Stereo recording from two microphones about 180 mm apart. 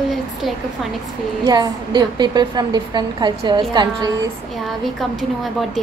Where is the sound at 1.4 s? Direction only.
20° right (ahead or behind).